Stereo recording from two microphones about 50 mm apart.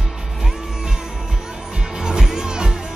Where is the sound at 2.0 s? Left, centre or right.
Centre.